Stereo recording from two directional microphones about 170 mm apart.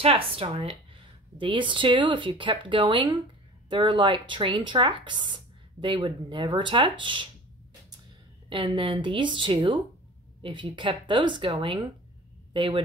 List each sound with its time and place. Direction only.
0.0 s speech: 35° right (ahead or behind)
8.5 s speech: 30° right (ahead or behind)
12.5 s speech: 30° right (ahead or behind)